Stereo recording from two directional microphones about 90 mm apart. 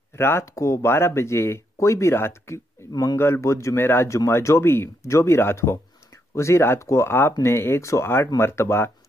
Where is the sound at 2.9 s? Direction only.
45° left (ahead or behind).